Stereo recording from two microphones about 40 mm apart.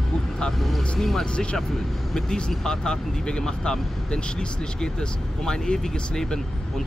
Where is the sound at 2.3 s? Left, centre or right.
Left.